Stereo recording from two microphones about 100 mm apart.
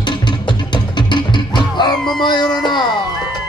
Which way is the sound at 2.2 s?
45° left (ahead or behind).